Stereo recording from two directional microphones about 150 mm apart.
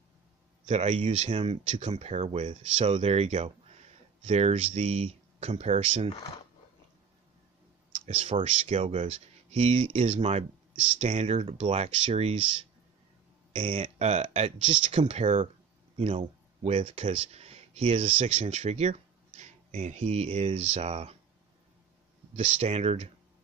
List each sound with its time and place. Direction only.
0.7 s speech: 45° right (ahead or behind)
8.0 s speech: 45° right (ahead or behind)
13.6 s speech: 40° right (ahead or behind)
22.3 s speech: 45° right (ahead or behind)